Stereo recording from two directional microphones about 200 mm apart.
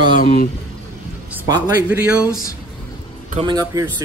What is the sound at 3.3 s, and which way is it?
Speech, 20° right (ahead or behind).